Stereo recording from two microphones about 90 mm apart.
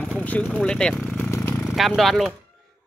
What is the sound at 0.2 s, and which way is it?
Speech, 15° left (ahead or behind).